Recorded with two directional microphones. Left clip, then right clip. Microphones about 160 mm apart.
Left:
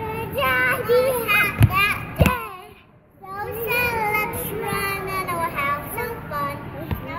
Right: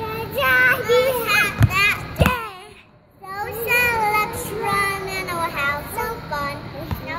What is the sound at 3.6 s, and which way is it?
Child singing, 20° right (ahead or behind).